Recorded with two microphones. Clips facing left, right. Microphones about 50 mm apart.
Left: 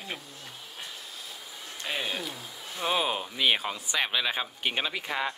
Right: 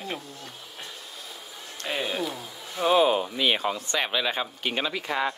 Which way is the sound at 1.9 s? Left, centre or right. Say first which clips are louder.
Right 4 dB; centre.